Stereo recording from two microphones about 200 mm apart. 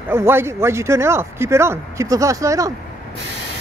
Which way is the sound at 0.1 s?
10° right (ahead or behind).